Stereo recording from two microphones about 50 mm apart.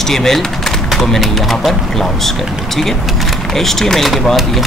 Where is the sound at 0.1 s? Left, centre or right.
Centre.